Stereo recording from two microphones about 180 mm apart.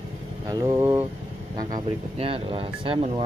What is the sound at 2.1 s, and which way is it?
Speech, 30° right (ahead or behind).